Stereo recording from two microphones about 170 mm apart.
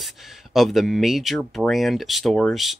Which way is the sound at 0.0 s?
Centre (ahead or behind).